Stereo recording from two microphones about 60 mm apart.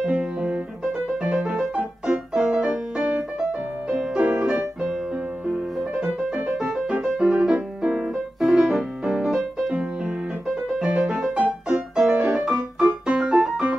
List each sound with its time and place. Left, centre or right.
0.0 s music: centre
5.9 s music: centre
6.6 s piano: centre
10.8 s music: centre
11.1 s music: centre
11.9 s music: centre